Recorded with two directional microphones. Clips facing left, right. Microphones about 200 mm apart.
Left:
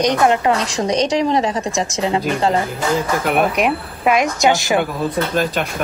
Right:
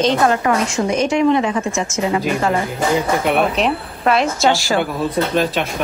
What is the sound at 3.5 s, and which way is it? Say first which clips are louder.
Speech: even; 10° left (ahead or behind).